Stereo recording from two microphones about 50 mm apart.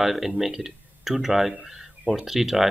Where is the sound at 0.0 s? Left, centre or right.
Centre.